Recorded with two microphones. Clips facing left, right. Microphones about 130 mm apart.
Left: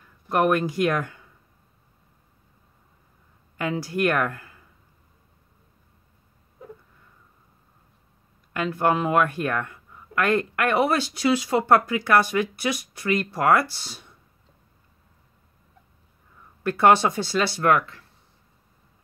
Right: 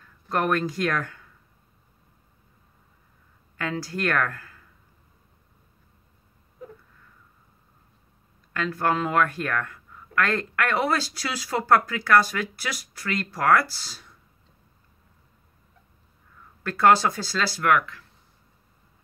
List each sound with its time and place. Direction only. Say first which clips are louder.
0.3 s speech: left 3 dB; 15° left (ahead or behind)
3.5 s speech: left 4 dB; 15° left (ahead or behind)
8.5 s speech: left 2 dB; 20° left (ahead or behind)
16.6 s speech: left 1 dB; 20° left (ahead or behind)